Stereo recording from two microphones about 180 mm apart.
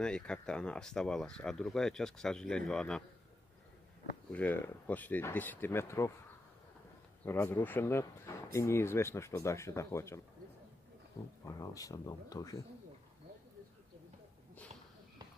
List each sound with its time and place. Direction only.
0.0 s speech: 5° left (ahead or behind)
4.3 s speech: 10° left (ahead or behind)
7.2 s speech: 15° left (ahead or behind)
11.4 s speech: 20° left (ahead or behind)